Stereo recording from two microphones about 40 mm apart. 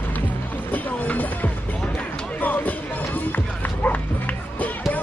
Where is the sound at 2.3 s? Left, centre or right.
Left.